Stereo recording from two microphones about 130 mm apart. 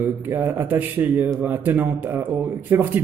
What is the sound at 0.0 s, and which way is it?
A man's voice, 20° right (ahead or behind).